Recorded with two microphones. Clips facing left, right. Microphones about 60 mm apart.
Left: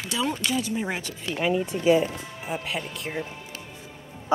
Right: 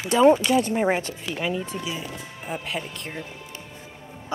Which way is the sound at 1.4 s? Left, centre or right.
Centre.